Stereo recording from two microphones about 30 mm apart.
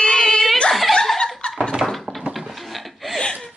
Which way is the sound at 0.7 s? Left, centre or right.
Centre.